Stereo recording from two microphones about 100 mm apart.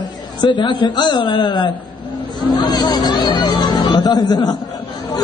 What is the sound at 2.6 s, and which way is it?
Chatter, 45° left (ahead or behind).